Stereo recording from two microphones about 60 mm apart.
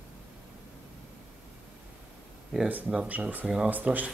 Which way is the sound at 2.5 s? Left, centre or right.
Centre.